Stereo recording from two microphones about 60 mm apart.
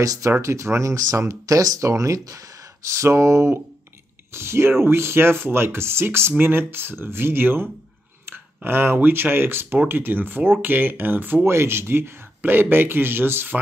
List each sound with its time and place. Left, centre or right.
0.0 s speech: right
0.4 s speech: right
1.8 s speech: right
11.4 s speech: right